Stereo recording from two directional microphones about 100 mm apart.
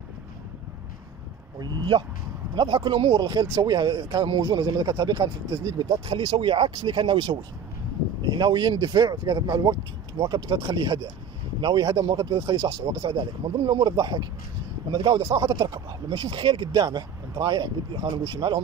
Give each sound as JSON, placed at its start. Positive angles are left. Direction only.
{"t": 1.6, "sound": "speech", "side_deg": -50}
{"t": 8.2, "sound": "speech", "side_deg": -45}